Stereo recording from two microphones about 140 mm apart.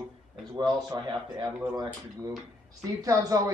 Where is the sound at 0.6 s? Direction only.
35° right (ahead or behind).